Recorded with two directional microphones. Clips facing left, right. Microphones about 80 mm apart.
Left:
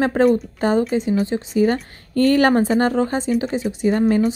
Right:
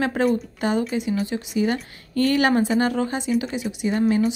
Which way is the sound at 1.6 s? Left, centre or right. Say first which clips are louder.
Left 5 dB; left.